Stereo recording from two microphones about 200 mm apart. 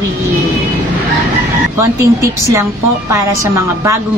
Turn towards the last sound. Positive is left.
turn(degrees=-15)  # may be behind; listen again after turning